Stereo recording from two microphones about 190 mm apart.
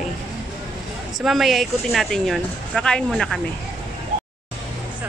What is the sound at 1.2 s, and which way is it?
Speech, centre (ahead or behind).